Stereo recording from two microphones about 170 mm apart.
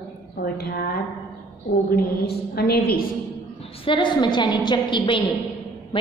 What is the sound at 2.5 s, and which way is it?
Speech, 65° left (ahead or behind).